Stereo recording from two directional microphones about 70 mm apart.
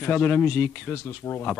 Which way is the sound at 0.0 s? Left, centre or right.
Left.